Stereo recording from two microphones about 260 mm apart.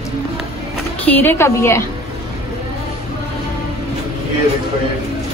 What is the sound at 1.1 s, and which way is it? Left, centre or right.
Speech, centre.